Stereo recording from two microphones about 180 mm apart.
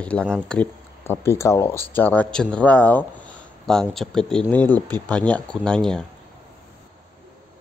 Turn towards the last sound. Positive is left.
turn(degrees=5)  # may be behind; listen again after turning